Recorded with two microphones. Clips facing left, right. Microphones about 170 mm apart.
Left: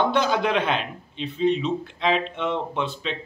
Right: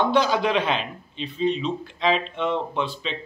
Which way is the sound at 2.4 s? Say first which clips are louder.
Right 1 dB; 10° left (ahead or behind).